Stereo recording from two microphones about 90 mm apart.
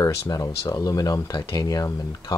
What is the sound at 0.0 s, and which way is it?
Speech, 40° left (ahead or behind).